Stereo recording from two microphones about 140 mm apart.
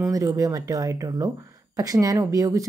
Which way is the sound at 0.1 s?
25° right (ahead or behind).